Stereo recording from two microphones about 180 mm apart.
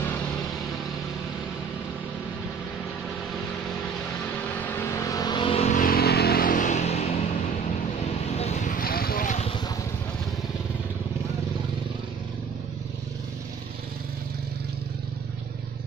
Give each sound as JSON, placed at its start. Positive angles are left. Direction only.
{"t": 4.6, "sound": "vehicle", "side_deg": 15}
{"t": 5.8, "sound": "vehicle", "side_deg": 55}
{"t": 8.4, "sound": "a sound", "side_deg": 40}